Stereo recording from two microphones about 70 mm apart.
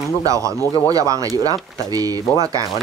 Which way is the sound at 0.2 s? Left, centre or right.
Right.